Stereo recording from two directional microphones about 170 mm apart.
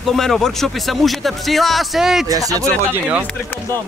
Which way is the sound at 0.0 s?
Centre (ahead or behind).